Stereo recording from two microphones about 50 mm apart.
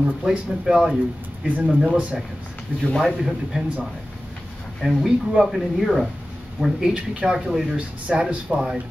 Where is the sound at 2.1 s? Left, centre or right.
Centre.